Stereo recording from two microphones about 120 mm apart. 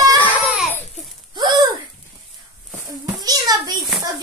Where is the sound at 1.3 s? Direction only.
35° right (ahead or behind).